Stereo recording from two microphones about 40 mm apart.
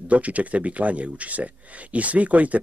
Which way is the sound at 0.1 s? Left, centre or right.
Right.